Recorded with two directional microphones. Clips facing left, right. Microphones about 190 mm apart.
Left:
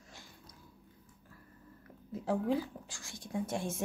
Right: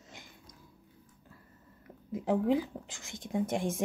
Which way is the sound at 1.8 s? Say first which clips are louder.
Right 4 dB; 15° right (ahead or behind).